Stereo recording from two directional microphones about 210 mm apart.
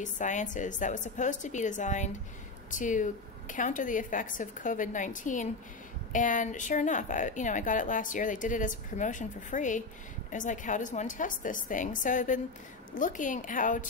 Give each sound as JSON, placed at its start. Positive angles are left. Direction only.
{"t": 0.0, "sound": "a woman's voice", "side_deg": 35}